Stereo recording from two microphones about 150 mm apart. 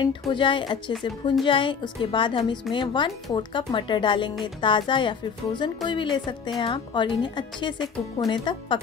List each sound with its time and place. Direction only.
0.3 s speech: 35° left (ahead or behind)